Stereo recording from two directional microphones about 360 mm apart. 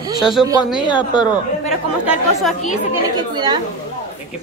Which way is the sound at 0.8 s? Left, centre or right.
Centre.